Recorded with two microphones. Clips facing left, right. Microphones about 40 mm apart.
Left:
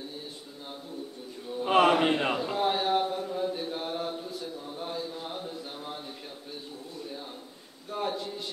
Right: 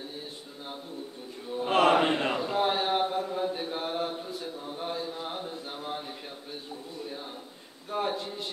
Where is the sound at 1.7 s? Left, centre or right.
Centre.